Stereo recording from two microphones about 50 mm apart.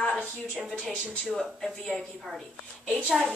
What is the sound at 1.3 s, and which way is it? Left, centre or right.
Speech, centre.